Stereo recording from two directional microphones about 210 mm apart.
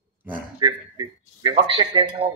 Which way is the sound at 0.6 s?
20° right (ahead or behind).